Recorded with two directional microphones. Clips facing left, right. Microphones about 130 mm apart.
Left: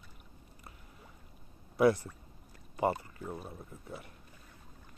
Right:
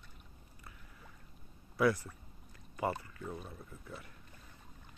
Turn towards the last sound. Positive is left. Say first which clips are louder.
# left 3 dB
turn(degrees=25)  # may be behind; listen again after turning